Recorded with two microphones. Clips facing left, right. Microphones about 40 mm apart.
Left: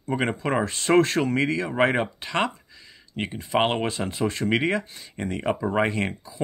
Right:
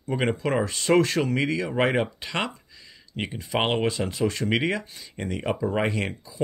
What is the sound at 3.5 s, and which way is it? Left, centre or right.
Speech, centre.